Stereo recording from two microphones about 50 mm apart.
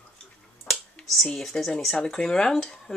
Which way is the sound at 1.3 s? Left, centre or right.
Centre.